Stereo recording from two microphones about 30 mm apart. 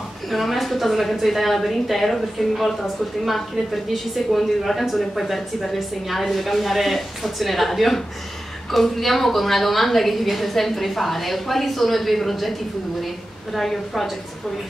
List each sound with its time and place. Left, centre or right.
0.3 s a woman's voice: centre
3.3 s a woman's voice: centre
13.6 s a woman's voice: centre